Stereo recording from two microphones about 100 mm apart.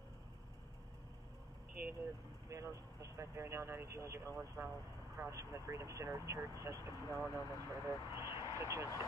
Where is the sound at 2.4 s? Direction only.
30° right (ahead or behind).